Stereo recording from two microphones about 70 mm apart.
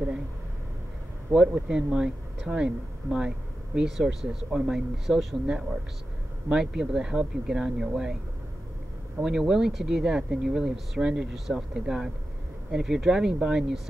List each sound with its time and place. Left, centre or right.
1.3 s speech: right
1.7 s speech: centre
9.2 s speech: centre